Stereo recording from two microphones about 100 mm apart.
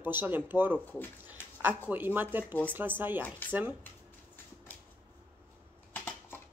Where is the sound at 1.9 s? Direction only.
20° right (ahead or behind).